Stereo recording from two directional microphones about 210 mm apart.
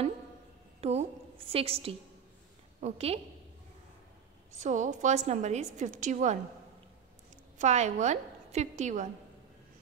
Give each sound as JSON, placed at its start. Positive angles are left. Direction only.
{"t": 0.7, "sound": "a sound", "side_deg": -30}
{"t": 1.5, "sound": "a woman's voice", "side_deg": -25}
{"t": 4.6, "sound": "a woman's voice", "side_deg": -35}
{"t": 7.5, "sound": "a woman's voice", "side_deg": -35}